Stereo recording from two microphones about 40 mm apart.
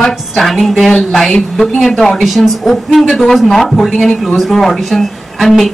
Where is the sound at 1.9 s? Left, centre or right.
Centre.